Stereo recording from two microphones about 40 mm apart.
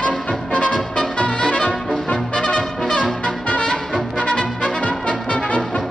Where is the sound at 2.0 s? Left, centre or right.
Left.